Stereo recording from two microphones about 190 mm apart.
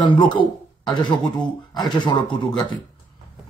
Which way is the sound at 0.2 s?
25° left (ahead or behind).